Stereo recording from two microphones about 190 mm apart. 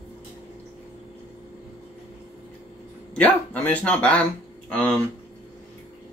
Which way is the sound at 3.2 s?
10° left (ahead or behind).